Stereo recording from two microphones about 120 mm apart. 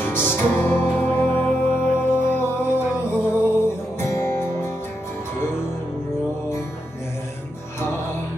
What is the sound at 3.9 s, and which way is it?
Music, 20° left (ahead or behind).